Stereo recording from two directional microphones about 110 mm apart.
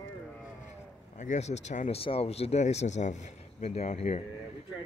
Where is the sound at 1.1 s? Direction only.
90° left.